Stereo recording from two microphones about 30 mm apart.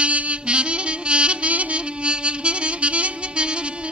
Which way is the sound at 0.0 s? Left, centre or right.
Right.